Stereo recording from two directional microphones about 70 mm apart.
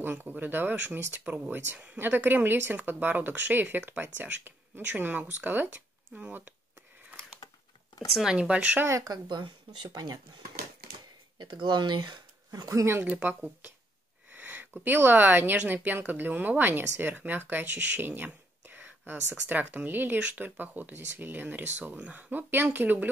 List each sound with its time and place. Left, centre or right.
0.0 s speech: right
8.1 s speech: centre
8.8 s speech: right
9.3 s speech: right
11.3 s speech: right
13.0 s speech: right